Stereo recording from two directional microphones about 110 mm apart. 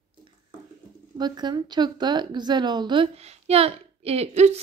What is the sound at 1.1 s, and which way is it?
A woman's voice, 40° right (ahead or behind).